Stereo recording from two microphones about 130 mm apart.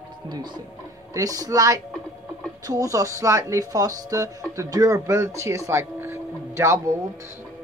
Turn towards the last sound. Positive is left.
turn(degrees=-20)  # may be behind; listen again after turning